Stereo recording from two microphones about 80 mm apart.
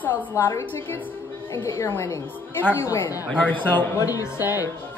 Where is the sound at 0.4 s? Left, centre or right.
Left.